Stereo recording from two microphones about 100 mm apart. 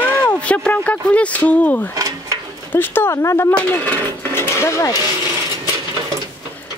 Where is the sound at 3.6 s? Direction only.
20° left (ahead or behind).